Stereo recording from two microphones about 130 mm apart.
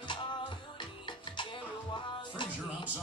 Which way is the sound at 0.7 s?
40° left (ahead or behind).